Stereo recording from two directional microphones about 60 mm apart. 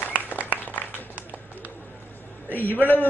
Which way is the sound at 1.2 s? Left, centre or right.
Right.